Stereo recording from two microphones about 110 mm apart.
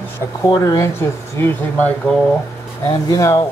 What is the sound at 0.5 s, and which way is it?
Speech, 35° left (ahead or behind).